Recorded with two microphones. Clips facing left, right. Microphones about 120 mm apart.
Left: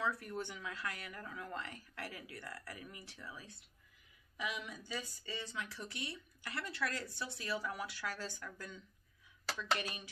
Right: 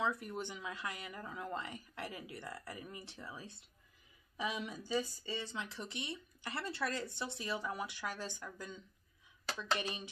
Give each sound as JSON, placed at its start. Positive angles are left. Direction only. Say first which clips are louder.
{"t": 0.0, "sound": "speech", "louder": "right 2 dB", "side_deg": -20}